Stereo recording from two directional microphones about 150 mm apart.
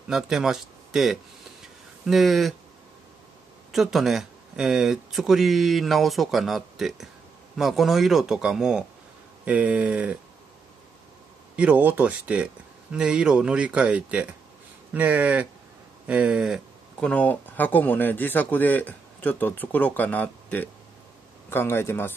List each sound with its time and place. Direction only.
0.1 s speech: 5° right (ahead or behind)
3.7 s speech: centre (ahead or behind)
11.5 s speech: 10° right (ahead or behind)
17.1 s speech: 10° left (ahead or behind)